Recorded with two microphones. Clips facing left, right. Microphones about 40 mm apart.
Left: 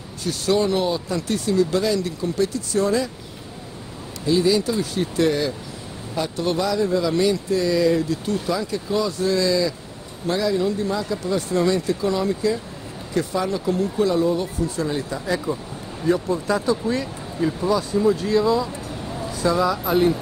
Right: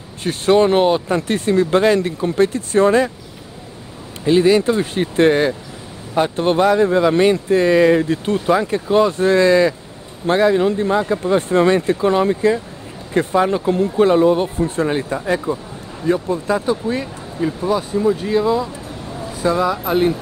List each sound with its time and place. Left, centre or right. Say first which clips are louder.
0.2 s speech: right 7 dB; right
4.2 s speech: right 6 dB; right
16.1 s speech: right 3 dB; right